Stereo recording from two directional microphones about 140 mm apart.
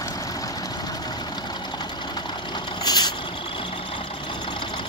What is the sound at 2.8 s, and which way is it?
Vehicle, 30° left (ahead or behind).